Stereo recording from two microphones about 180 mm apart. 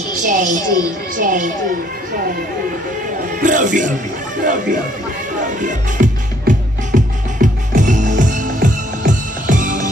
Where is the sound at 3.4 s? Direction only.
45° right (ahead or behind).